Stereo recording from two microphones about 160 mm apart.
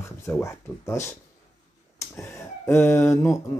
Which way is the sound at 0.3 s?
15° left (ahead or behind).